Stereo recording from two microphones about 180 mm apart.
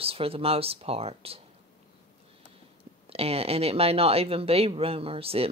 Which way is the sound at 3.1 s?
35° right (ahead or behind).